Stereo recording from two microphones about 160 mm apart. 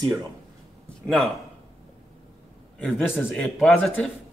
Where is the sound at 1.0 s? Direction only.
Centre (ahead or behind).